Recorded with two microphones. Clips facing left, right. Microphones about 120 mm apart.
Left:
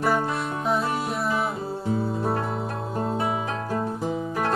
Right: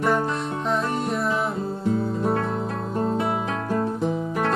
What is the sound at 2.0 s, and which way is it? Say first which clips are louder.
Music: right 1 dB; 5° left (ahead or behind).